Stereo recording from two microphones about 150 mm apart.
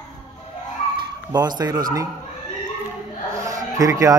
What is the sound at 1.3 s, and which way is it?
Speech, 25° right (ahead or behind).